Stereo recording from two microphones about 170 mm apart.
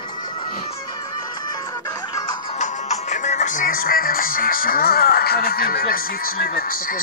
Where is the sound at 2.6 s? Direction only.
45° left (ahead or behind).